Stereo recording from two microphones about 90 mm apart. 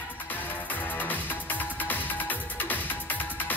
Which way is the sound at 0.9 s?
20° left (ahead or behind).